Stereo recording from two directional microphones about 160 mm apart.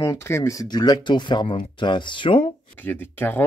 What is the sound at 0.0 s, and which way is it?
Speech, 15° left (ahead or behind).